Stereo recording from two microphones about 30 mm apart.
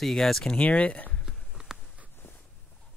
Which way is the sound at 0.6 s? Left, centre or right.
Left.